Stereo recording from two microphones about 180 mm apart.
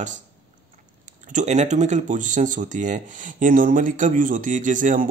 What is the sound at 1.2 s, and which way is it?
Speech, 40° right (ahead or behind).